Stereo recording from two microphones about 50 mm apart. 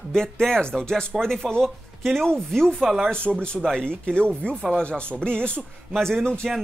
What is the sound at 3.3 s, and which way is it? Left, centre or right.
Speech, centre.